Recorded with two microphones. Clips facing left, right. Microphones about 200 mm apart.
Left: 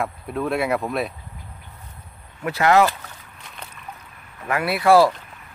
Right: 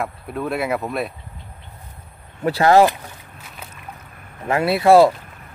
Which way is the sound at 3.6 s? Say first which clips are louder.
Right 1 dB; 5° right (ahead or behind).